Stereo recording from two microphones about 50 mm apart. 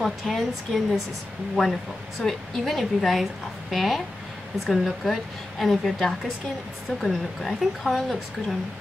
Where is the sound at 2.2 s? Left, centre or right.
Centre.